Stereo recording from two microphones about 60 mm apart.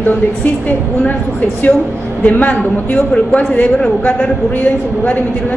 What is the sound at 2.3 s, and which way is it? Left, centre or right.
A woman's voice, left.